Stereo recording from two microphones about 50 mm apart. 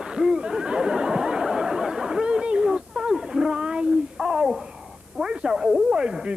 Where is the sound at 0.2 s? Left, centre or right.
Centre.